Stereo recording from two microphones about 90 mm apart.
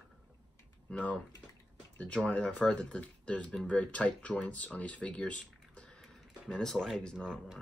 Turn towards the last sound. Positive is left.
turn(degrees=10)  # may be behind; listen again after turning